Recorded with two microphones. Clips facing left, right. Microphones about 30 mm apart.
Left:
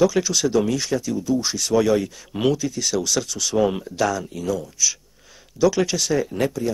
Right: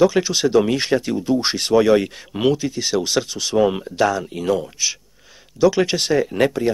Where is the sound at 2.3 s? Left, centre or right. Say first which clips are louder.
Right 1 dB; centre.